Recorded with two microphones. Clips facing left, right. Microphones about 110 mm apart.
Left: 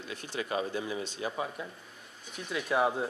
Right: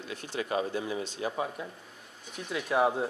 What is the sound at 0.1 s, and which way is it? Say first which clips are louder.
Speech: right 2 dB; 55° right (ahead or behind).